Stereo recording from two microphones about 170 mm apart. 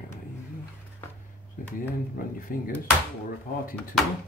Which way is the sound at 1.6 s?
55° left (ahead or behind).